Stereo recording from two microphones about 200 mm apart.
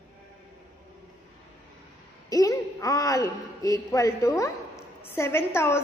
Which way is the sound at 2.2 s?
15° left (ahead or behind).